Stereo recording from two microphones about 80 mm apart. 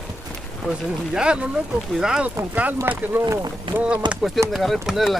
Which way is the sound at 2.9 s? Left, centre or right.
Right.